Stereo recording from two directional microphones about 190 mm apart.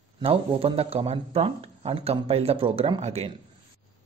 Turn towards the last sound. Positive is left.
turn(degrees=-30)  # may be behind; listen again after turning